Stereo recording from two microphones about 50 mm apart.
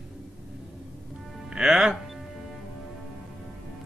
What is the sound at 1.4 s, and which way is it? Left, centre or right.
Music, centre.